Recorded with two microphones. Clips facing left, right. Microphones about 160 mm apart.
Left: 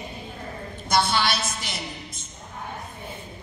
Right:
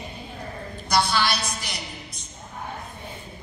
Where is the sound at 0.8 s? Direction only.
25° left (ahead or behind).